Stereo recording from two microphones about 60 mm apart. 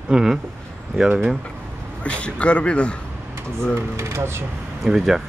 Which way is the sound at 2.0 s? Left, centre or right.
Centre.